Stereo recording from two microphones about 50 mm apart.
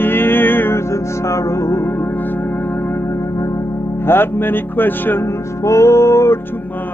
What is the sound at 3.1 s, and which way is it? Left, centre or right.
Music, left.